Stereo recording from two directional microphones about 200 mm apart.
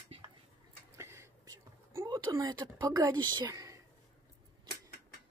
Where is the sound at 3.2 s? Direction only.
20° right (ahead or behind).